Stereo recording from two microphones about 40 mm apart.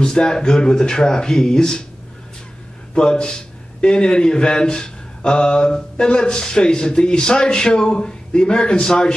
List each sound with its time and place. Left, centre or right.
0.0 s a man's voice: left
2.9 s a man's voice: left